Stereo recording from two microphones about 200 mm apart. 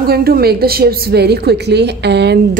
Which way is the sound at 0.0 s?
50° right (ahead or behind).